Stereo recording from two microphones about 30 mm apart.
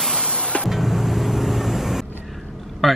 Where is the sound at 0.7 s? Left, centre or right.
Centre.